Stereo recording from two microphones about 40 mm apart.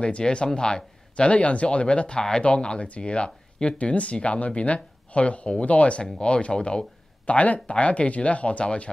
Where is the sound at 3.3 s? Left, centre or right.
Centre.